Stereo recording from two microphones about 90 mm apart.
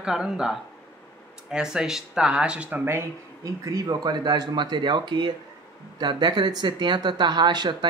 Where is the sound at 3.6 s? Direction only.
40° right (ahead or behind).